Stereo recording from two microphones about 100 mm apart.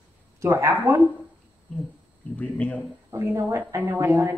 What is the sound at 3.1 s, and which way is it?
A woman's voice, 25° right (ahead or behind).